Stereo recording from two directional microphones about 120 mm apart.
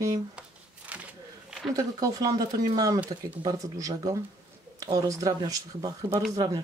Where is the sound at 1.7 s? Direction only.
30° right (ahead or behind).